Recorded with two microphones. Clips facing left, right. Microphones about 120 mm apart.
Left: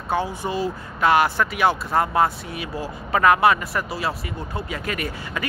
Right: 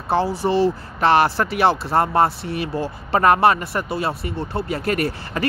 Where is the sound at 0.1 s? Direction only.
35° right (ahead or behind).